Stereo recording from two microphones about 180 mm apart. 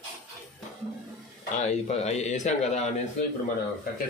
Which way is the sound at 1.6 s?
35° left (ahead or behind).